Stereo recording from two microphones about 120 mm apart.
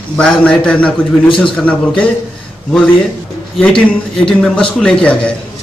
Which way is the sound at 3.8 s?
10° left (ahead or behind).